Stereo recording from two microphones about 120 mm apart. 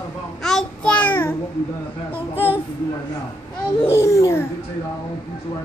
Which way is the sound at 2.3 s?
20° left (ahead or behind).